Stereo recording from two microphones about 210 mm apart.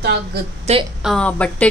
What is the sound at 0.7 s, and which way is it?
Speech, 30° right (ahead or behind).